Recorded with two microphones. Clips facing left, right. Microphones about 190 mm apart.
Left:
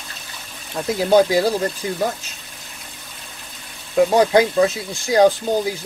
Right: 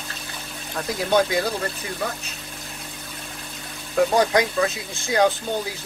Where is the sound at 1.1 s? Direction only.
30° left (ahead or behind).